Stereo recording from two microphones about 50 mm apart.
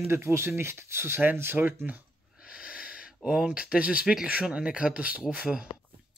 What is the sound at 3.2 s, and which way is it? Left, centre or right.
Speech, right.